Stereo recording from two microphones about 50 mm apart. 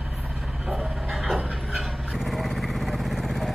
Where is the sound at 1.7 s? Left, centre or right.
Centre.